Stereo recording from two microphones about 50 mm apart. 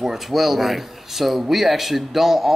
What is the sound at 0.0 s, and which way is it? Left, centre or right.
Speech, centre.